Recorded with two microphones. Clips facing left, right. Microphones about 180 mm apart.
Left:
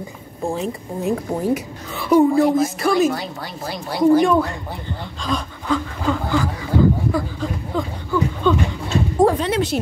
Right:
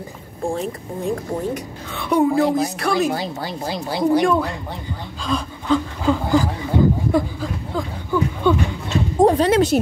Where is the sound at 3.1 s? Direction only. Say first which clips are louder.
Right 3 dB; 30° right (ahead or behind).